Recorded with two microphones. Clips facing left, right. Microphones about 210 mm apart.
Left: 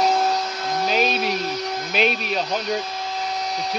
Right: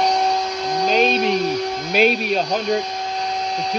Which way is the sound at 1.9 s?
Centre (ahead or behind).